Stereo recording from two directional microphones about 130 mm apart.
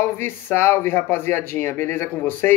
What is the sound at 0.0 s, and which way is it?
Speech, 15° left (ahead or behind).